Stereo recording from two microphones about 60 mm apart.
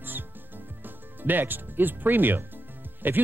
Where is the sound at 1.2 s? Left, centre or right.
Right.